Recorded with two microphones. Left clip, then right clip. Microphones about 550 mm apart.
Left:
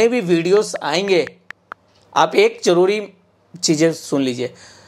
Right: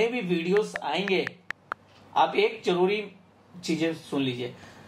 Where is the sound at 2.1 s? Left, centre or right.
Left.